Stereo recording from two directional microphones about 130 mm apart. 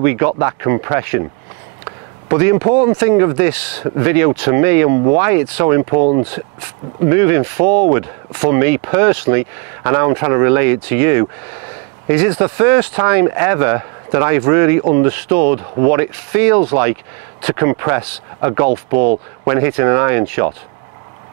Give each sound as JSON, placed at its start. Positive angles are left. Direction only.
{"t": 0.0, "sound": "speech", "side_deg": -20}